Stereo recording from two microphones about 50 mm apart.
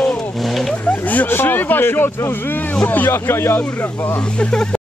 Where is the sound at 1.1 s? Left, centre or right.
Left.